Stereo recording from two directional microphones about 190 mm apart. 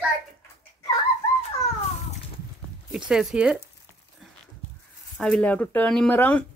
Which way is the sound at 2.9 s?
5° right (ahead or behind).